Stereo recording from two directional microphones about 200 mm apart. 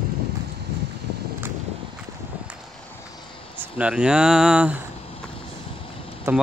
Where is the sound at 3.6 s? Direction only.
5° right (ahead or behind).